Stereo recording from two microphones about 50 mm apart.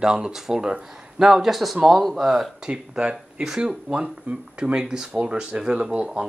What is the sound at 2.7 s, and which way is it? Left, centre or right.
Speech, right.